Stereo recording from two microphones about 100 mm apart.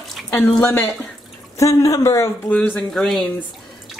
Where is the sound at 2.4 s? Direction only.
15° left (ahead or behind).